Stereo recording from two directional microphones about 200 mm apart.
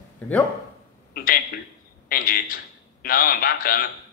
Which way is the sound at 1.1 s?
50° left (ahead or behind).